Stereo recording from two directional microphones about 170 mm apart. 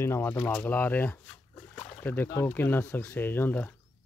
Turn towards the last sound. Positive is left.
turn(degrees=10)  # may be behind; listen again after turning